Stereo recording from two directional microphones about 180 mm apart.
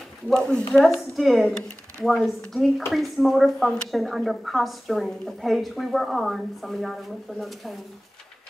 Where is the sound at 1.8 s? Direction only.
15° right (ahead or behind).